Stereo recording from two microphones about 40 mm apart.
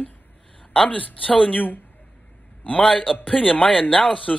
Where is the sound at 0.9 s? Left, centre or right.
Left.